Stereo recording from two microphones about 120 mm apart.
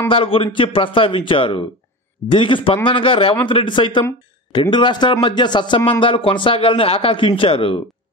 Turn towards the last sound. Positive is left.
turn(degrees=50)  # may be behind; listen again after turning